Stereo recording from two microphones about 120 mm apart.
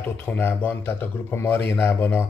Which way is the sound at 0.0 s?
15° left (ahead or behind).